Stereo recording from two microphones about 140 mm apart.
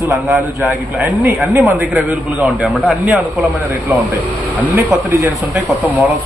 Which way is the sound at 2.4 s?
Centre (ahead or behind).